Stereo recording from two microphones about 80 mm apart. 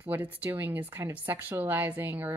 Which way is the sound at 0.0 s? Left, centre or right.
Right.